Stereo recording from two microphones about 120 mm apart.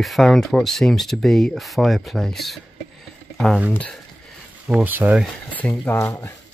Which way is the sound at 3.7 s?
10° left (ahead or behind).